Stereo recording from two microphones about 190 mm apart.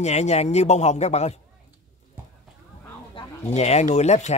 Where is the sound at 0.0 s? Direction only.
35° left (ahead or behind).